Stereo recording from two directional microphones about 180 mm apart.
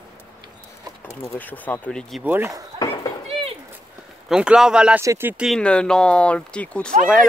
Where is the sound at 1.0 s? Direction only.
15° left (ahead or behind).